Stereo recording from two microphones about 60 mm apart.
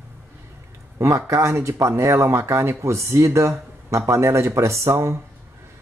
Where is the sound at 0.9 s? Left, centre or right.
Right.